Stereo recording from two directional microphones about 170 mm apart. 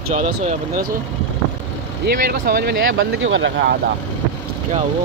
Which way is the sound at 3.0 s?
90° right.